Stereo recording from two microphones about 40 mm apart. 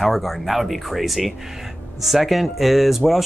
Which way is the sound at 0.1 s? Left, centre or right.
Centre.